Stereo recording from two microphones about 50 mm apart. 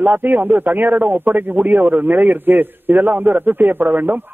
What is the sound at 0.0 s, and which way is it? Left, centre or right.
Speech, right.